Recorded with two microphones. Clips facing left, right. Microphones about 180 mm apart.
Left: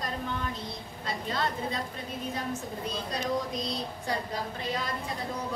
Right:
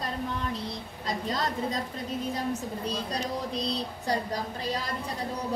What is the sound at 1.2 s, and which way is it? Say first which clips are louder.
Speech: right 1 dB; 40° right (ahead or behind).